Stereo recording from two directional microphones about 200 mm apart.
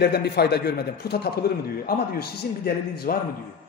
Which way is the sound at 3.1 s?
50° left (ahead or behind).